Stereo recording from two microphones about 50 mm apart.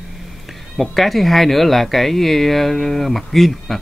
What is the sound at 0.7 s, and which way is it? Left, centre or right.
Speech, centre.